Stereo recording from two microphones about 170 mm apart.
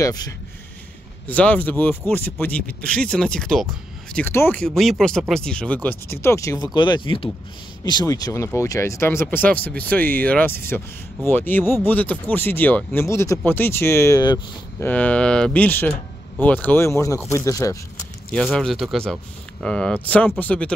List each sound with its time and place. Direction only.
0.0 s speech: 25° left (ahead or behind)
1.2 s speech: 10° left (ahead or behind)
14.9 s speech: 10° left (ahead or behind)
18.5 s speech: centre (ahead or behind)